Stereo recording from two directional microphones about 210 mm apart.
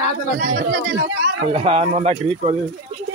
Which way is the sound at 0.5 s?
45° right (ahead or behind).